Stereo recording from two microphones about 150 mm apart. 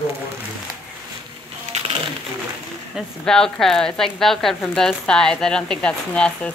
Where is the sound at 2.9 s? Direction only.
5° left (ahead or behind).